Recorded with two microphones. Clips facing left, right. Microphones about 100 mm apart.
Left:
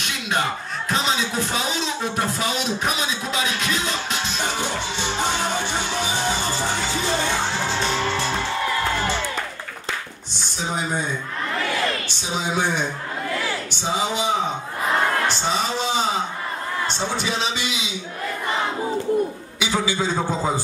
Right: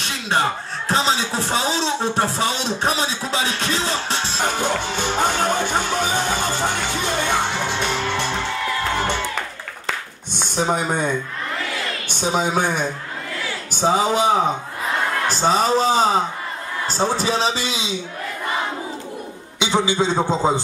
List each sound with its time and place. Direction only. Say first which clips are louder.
0.0 s speech: right 3 dB; 35° right (ahead or behind)
4.4 s music: right 6 dB; 50° right (ahead or behind)
10.4 s speech: right 6 dB; 55° right (ahead or behind)
12.1 s a woman's voice: right 5 dB; 50° right (ahead or behind); by 18.0 s 30° right (ahead or behind)
19.6 s a man's voice: right 4 dB; 25° right (ahead or behind)